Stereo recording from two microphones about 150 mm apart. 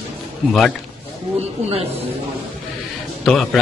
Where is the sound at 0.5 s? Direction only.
5° left (ahead or behind).